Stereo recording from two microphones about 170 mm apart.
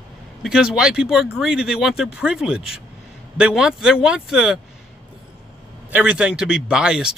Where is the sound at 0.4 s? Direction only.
5° right (ahead or behind).